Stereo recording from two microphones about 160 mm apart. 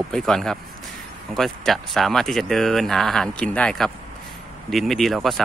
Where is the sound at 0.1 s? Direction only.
Centre (ahead or behind).